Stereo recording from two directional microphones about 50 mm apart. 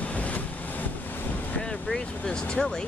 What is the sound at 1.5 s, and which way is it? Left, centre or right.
Vehicle, left.